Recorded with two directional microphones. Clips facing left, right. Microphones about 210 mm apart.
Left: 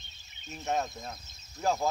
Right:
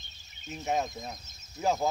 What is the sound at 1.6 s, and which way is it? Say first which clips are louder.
Speech: right 1 dB; 5° right (ahead or behind).